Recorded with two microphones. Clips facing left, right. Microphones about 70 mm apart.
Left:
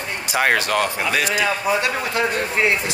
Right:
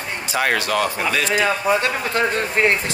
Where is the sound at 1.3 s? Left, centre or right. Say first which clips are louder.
Right 2 dB; right.